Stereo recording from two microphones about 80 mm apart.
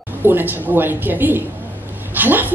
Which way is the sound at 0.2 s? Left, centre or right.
Right.